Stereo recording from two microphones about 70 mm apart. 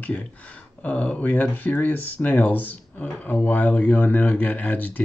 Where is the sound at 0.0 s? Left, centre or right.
Centre.